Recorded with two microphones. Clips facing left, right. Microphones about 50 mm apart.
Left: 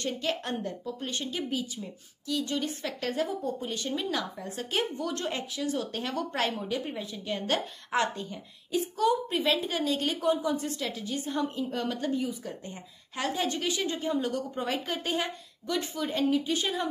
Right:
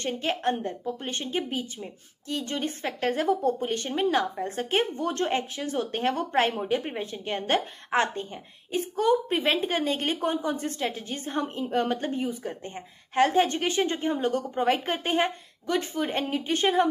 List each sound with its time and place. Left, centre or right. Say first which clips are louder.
0.0 s a woman's voice: right 4 dB; right